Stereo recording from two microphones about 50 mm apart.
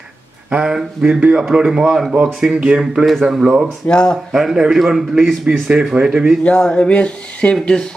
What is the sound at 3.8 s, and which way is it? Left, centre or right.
Speech, centre.